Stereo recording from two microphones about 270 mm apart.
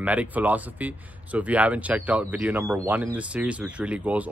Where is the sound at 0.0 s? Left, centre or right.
Centre.